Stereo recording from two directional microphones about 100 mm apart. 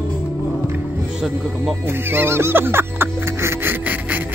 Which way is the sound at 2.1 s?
25° right (ahead or behind).